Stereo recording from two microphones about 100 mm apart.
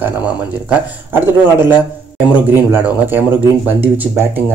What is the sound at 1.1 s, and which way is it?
Speech, 20° right (ahead or behind).